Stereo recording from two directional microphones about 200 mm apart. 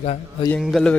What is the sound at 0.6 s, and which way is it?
Speech, centre (ahead or behind).